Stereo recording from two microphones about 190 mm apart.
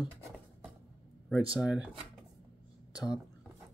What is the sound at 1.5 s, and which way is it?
Speech, 5° right (ahead or behind).